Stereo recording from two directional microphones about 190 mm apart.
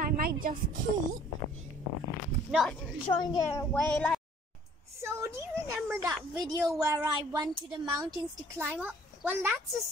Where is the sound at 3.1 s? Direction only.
25° left (ahead or behind).